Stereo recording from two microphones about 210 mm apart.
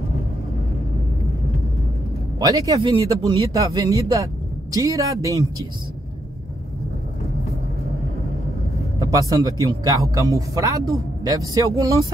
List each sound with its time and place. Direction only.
2.4 s speech: 15° right (ahead or behind)
9.0 s speech: 15° right (ahead or behind)